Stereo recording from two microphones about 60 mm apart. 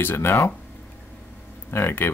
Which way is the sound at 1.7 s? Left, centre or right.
Left.